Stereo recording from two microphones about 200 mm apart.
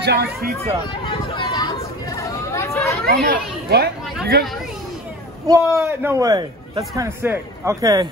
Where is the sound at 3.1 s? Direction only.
50° right (ahead or behind).